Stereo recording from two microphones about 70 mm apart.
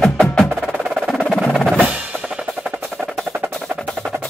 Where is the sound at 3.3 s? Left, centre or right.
Right.